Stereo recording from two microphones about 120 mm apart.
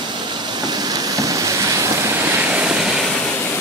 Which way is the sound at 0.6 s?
35° right (ahead or behind).